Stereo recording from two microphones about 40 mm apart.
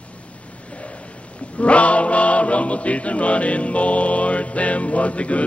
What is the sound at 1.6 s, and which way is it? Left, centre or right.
Music, left.